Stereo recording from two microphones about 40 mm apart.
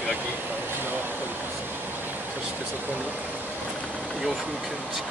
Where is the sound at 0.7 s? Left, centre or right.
Right.